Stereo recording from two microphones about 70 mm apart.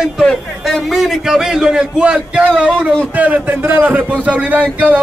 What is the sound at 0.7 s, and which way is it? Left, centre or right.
A man's voice, centre.